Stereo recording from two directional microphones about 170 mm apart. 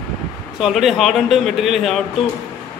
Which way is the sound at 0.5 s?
Centre (ahead or behind).